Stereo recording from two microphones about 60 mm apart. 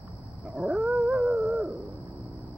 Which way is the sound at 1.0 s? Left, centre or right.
Centre.